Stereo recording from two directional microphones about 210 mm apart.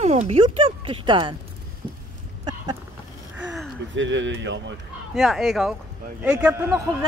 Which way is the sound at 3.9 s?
60° right (ahead or behind).